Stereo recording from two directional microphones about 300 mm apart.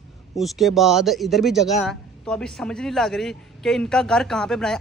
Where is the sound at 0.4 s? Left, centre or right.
Centre.